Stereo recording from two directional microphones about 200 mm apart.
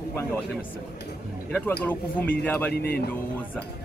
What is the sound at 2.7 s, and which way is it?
Speech, 50° left (ahead or behind).